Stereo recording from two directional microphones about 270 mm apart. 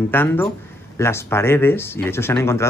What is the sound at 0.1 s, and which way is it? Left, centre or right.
Speech, centre.